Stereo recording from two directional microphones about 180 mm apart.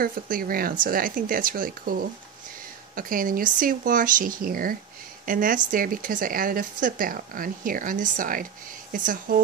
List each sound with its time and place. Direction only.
0.0 s speech: 50° right (ahead or behind)